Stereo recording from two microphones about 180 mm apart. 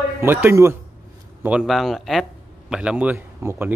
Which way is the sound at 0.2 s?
10° right (ahead or behind).